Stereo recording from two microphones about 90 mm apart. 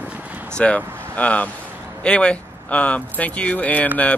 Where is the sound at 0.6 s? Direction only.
15° left (ahead or behind).